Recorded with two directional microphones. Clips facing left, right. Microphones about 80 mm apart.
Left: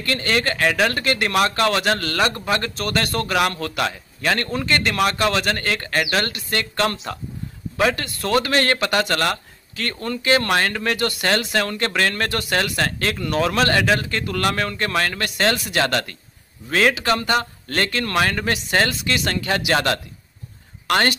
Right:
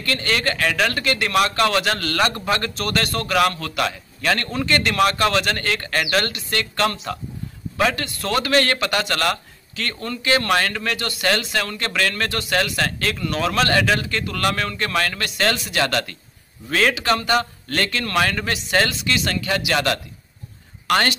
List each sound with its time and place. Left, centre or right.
0.0 s speech: left
2.1 s a man's voice: centre
8.2 s speech: left
17.6 s speech: left
18.9 s speech: left